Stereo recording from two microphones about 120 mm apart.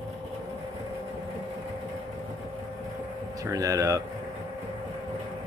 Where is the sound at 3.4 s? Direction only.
30° right (ahead or behind).